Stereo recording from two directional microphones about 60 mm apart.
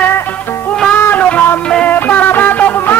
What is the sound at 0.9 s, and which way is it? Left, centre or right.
Child singing, left.